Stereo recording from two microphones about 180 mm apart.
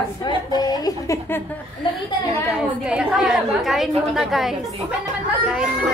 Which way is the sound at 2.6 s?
5° right (ahead or behind).